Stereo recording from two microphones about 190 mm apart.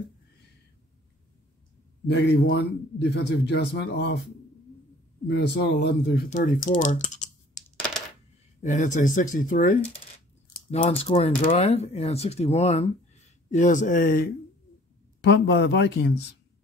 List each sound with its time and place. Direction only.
2.0 s a man's voice: 60° left (ahead or behind)
5.3 s a man's voice: 60° left (ahead or behind)
6.3 s speech: 45° left (ahead or behind)
8.6 s speech: 40° left (ahead or behind)
10.7 s speech: 30° left (ahead or behind); by 14.3 s 50° left (ahead or behind)
15.2 s a man's voice: 65° left (ahead or behind)